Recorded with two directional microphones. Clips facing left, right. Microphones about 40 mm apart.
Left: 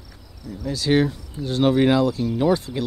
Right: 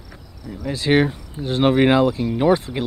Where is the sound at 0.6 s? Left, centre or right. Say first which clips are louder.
Right 2 dB; right.